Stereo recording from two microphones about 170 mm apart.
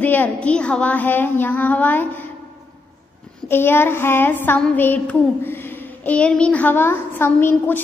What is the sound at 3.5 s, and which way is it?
A woman's voice, 15° left (ahead or behind).